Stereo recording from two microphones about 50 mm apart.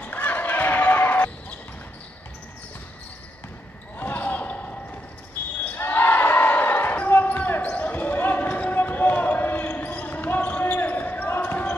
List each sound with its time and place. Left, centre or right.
0.0 s basketball bounce: left
4.0 s basketball bounce: left
5.8 s basketball bounce: left